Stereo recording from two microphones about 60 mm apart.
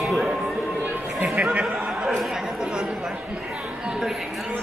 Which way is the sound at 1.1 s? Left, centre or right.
Centre.